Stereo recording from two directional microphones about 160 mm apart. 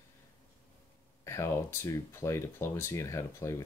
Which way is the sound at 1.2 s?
15° left (ahead or behind).